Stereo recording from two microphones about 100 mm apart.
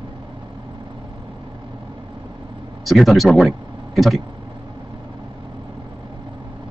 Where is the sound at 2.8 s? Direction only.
Centre (ahead or behind).